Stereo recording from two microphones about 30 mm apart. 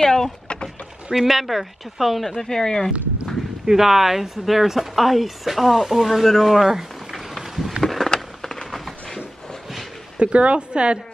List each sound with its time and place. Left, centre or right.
0.0 s speech: centre
1.2 s speech: centre
2.4 s speech: left
3.6 s speech: centre
7.1 s a sound: centre
7.8 s a sound: centre
10.1 s a woman's voice: right